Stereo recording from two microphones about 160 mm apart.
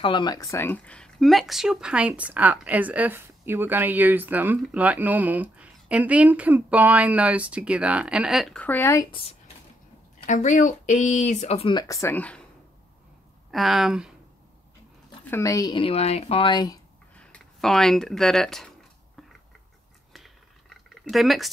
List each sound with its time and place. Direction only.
0.0 s speech: 30° left (ahead or behind); by 8.6 s centre (ahead or behind)
8.6 s speech: 15° left (ahead or behind)
10.2 s speech: 50° left (ahead or behind)
11.7 s speech: 20° left (ahead or behind)
13.5 s speech: centre (ahead or behind)
15.2 s speech: 15° left (ahead or behind)
17.2 s speech: 5° left (ahead or behind)
20.7 s a sound: centre (ahead or behind)